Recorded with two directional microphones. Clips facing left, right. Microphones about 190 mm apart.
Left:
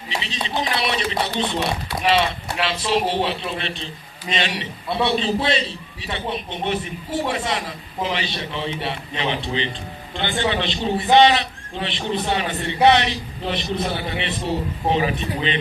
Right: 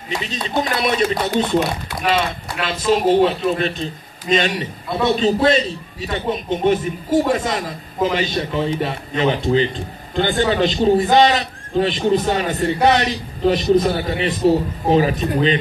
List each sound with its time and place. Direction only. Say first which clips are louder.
0.1 s a man's voice: right 4 dB; 45° right (ahead or behind)